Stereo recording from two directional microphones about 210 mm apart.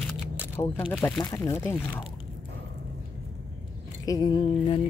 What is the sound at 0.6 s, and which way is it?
Speech, 10° left (ahead or behind).